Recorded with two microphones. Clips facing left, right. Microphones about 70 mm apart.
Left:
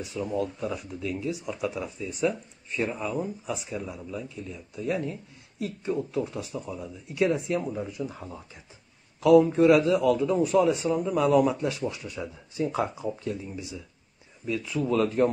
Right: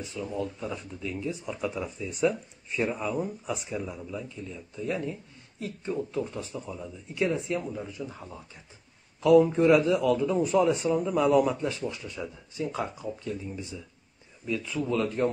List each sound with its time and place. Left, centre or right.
0.0 s speech: centre
8.0 s speech: centre
13.2 s speech: centre